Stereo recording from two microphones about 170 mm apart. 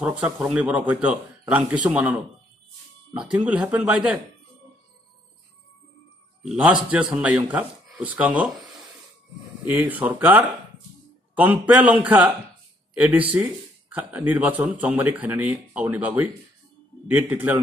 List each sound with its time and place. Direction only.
0.0 s speech: 5° right (ahead or behind)
3.2 s speech: 5° right (ahead or behind)
6.4 s a man's voice: 5° right (ahead or behind)